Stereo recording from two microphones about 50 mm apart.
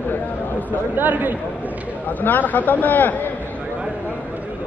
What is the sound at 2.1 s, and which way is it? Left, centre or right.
A man's voice, left.